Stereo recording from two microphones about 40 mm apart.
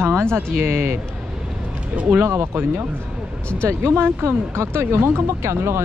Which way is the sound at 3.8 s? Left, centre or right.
Right.